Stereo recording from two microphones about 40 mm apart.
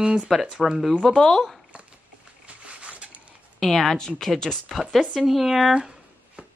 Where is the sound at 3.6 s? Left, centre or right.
Centre.